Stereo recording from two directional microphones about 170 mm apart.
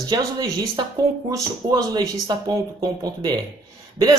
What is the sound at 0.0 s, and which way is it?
Speech, 25° right (ahead or behind).